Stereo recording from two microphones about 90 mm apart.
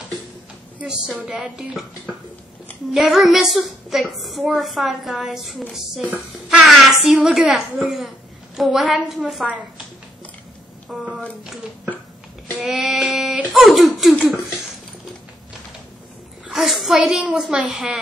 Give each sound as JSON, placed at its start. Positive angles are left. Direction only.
{"t": 0.7, "sound": "a woman's voice", "side_deg": -5}
{"t": 2.9, "sound": "a woman's voice", "side_deg": 0}
{"t": 6.0, "sound": "a child's voice", "side_deg": -20}
{"t": 6.6, "sound": "child singing", "side_deg": 0}
{"t": 7.2, "sound": "a woman's voice", "side_deg": -5}
{"t": 10.9, "sound": "a woman's voice", "side_deg": -5}
{"t": 12.5, "sound": "a woman's voice", "side_deg": -5}
{"t": 14.1, "sound": "a sound", "side_deg": 15}
{"t": 16.4, "sound": "a woman's voice", "side_deg": 0}